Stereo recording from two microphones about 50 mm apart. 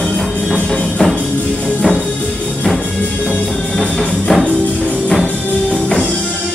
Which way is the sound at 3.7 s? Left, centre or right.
Centre.